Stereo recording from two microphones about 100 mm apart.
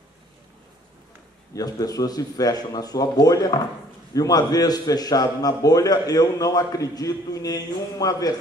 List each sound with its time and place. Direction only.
1.5 s a man's voice: 40° left (ahead or behind)